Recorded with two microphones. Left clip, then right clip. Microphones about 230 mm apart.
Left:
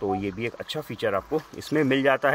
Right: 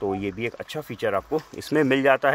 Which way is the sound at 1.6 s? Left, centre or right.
Right.